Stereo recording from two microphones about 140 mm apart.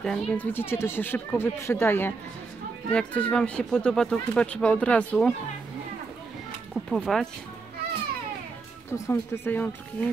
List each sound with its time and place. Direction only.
0.0 s speech: 5° left (ahead or behind)
6.7 s speech: centre (ahead or behind)
8.9 s speech: 20° left (ahead or behind)